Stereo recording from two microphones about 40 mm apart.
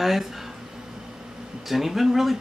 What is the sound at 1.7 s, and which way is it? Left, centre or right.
Speech, centre.